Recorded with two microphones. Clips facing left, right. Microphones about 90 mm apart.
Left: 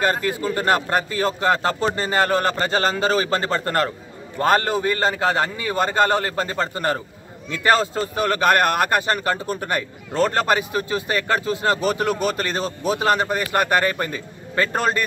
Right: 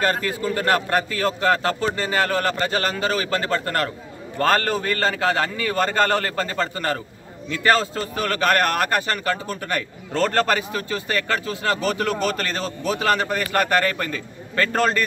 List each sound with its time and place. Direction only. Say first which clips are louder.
0.0 s a man's voice: left 1 dB; 25° left (ahead or behind)
4.4 s a man's voice: left 1 dB; 15° left (ahead or behind)